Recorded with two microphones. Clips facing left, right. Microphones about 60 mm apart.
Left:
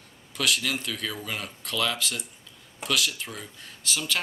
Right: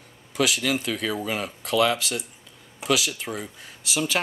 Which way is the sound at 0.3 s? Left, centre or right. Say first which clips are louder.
Right 4 dB; centre.